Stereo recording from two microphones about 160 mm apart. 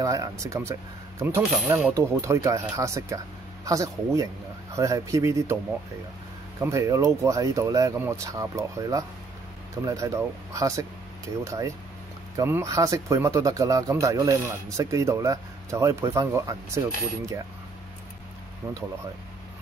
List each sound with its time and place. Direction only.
0.0 s speech: 20° right (ahead or behind)
6.6 s speech: 20° right (ahead or behind)